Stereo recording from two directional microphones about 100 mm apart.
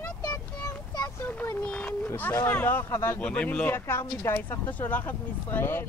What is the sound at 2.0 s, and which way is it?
Speech, 20° left (ahead or behind).